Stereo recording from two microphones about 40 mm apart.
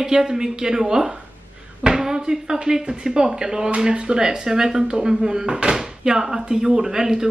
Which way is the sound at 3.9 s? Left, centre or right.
Right.